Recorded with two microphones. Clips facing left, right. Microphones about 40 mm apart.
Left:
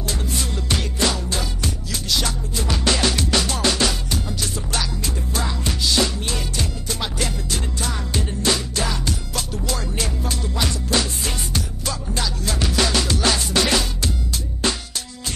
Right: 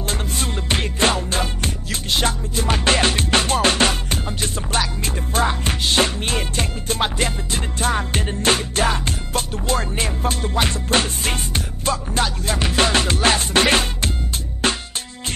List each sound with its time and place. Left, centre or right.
0.0 s music: right